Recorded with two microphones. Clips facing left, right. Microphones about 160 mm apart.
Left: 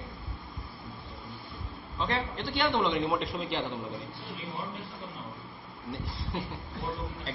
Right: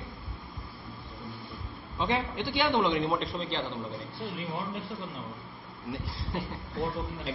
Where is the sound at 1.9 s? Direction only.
15° right (ahead or behind).